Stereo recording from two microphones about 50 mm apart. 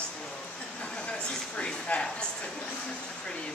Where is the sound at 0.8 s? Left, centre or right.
Left.